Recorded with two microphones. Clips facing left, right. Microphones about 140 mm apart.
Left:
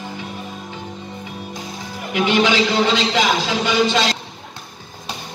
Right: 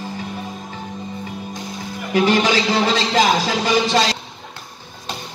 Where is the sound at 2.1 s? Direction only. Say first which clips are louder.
Right 1 dB; 40° right (ahead or behind).